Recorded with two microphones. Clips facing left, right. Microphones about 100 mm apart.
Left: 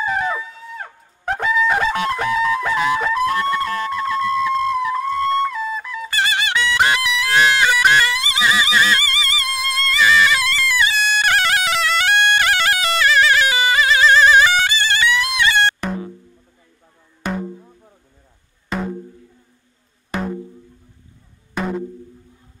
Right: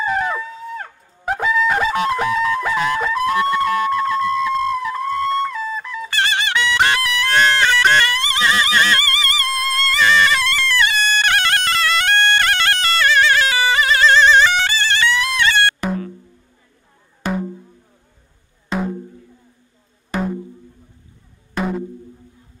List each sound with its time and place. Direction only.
0.0 s brass instrument: centre (ahead or behind)
3.3 s flute: 5° right (ahead or behind)
9.5 s music: centre (ahead or behind)
17.2 s music: 5° right (ahead or behind)
18.7 s music: centre (ahead or behind)
20.1 s music: centre (ahead or behind)
21.5 s music: centre (ahead or behind)